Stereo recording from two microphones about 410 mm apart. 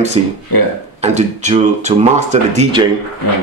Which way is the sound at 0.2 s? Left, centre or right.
Centre.